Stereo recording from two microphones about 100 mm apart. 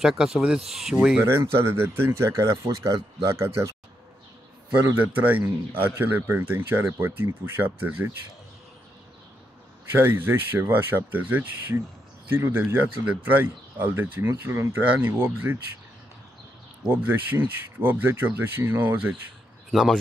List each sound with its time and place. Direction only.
0.0 s speech: 5° right (ahead or behind)
1.2 s speech: 25° right (ahead or behind)
4.8 s speech: 15° right (ahead or behind)
9.9 s speech: 20° right (ahead or behind)
16.9 s speech: 20° right (ahead or behind)
19.7 s speech: centre (ahead or behind)